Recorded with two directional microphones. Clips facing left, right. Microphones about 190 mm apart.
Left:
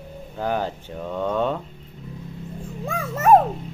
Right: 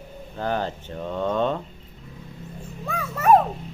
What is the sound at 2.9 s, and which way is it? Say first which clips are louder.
Dog: left 2 dB; 25° left (ahead or behind).